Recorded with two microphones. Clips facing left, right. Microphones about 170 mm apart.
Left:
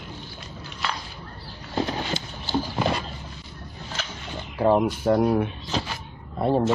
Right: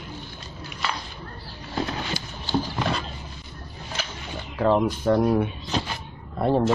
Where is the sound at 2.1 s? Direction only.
25° left (ahead or behind).